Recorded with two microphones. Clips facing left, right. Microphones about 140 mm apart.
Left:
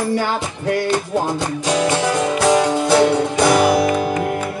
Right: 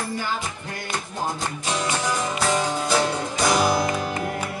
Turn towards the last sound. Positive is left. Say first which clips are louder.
# left 7 dB
turn(degrees=65)  # may be behind; listen again after turning